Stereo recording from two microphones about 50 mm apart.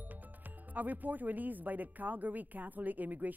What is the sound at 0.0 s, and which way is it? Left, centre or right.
Speech, right.